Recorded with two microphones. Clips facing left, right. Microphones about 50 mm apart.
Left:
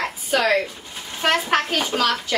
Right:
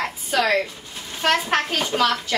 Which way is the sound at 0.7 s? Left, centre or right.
Centre.